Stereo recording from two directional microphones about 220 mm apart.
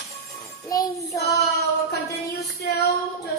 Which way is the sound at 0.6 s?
15° left (ahead or behind).